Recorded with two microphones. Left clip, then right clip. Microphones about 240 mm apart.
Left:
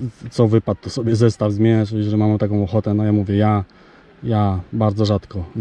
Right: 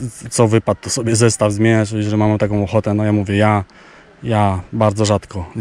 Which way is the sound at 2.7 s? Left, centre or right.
Centre.